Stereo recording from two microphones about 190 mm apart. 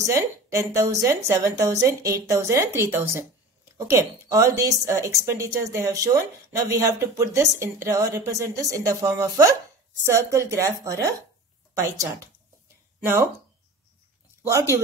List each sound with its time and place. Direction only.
0.0 s a woman's voice: 15° right (ahead or behind)
14.4 s speech: 15° right (ahead or behind)